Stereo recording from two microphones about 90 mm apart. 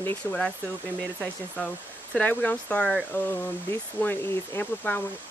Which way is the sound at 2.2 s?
20° left (ahead or behind).